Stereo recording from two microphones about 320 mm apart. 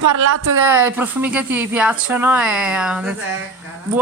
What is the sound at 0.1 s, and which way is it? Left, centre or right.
Speech, right.